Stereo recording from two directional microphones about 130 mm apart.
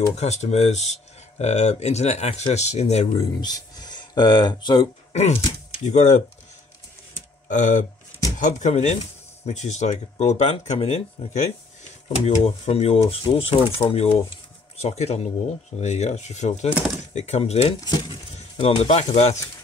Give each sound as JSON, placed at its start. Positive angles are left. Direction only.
{"t": 0.2, "sound": "speech", "side_deg": 60}
{"t": 3.3, "sound": "speech", "side_deg": 30}
{"t": 5.1, "sound": "speech", "side_deg": 60}
{"t": 7.4, "sound": "speech", "side_deg": 80}
{"t": 17.7, "sound": "speech", "side_deg": 30}
{"t": 18.6, "sound": "speech", "side_deg": 50}